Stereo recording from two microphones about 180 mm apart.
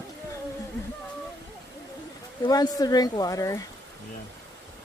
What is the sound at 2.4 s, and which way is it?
Speech, 20° left (ahead or behind).